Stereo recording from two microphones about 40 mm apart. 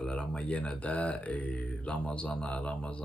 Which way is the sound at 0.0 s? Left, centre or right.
Left.